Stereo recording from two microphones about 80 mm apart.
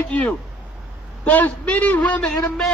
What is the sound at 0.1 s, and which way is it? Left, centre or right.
A man's voice, centre.